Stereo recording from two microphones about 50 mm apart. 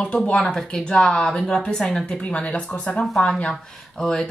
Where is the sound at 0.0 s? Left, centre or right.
Centre.